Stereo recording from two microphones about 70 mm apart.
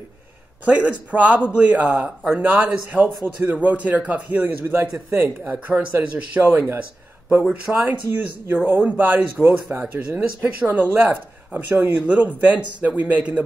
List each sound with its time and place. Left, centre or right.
0.7 s speech: right
7.7 s speech: centre
8.1 s speech: right
8.6 s speech: right